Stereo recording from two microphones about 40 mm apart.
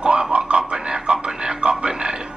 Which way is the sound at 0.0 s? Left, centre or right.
Right.